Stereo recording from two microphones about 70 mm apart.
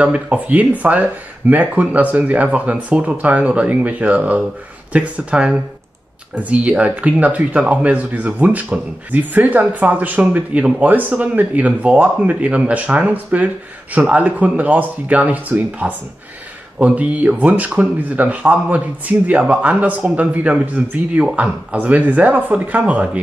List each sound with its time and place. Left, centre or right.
0.0 s speech: centre